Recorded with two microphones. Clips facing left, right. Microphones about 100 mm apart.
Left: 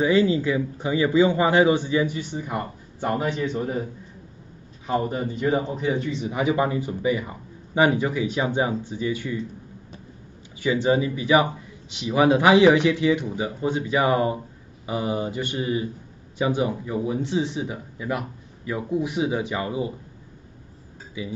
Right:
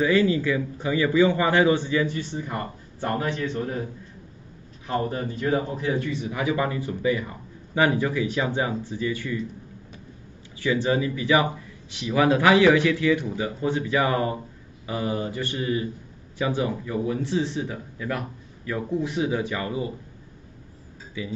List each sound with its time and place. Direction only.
0.0 s a man's voice: 20° left (ahead or behind)
4.8 s a man's voice: 15° left (ahead or behind)
10.6 s a man's voice: 20° left (ahead or behind)
21.2 s a man's voice: 15° left (ahead or behind)